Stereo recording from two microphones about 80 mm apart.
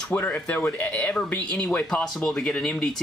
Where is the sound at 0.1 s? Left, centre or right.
Left.